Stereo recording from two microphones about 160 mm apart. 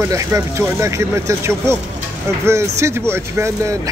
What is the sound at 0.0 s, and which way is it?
Speech, 15° right (ahead or behind).